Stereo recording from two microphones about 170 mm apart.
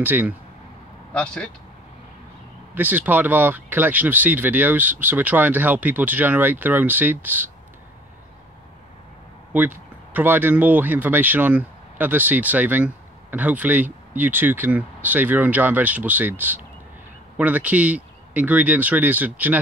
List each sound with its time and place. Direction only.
0.0 s speech: 10° right (ahead or behind)
1.1 s speech: 5° left (ahead or behind)
2.7 s speech: 10° right (ahead or behind)
9.5 s speech: 10° right (ahead or behind)